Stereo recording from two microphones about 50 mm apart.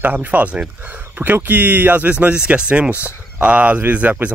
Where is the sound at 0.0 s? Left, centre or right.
Right.